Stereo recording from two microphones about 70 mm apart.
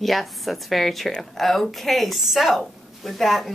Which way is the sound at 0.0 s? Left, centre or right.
Centre.